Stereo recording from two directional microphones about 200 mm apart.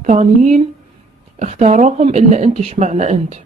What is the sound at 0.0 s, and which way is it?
Speech, 35° right (ahead or behind).